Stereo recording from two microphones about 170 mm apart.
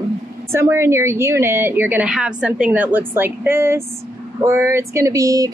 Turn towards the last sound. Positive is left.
turn(degrees=-20)  # may be behind; listen again after turning